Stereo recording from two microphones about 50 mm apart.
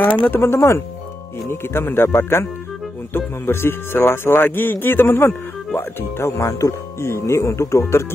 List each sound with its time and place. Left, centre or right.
0.0 s speech: left
0.4 s speech: left
1.5 s speech: left